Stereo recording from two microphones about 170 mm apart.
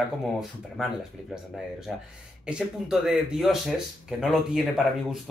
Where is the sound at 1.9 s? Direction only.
5° right (ahead or behind).